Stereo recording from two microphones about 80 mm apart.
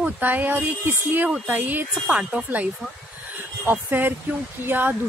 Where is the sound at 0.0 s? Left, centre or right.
Right.